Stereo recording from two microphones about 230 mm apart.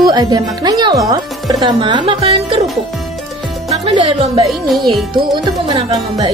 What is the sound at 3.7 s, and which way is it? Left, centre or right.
Speech, right.